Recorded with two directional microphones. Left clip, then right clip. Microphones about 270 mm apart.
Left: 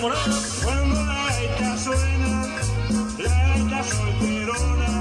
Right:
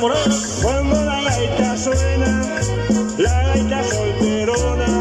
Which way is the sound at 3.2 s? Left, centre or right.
Right.